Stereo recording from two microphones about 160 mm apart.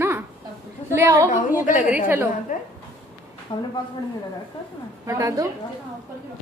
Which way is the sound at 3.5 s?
25° left (ahead or behind).